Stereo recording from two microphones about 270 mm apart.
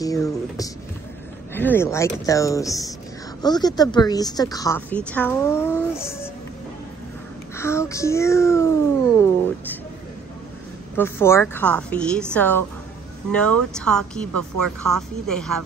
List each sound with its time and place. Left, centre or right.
0.0 s a woman's voice: centre
7.5 s a woman's voice: centre
11.0 s a woman's voice: centre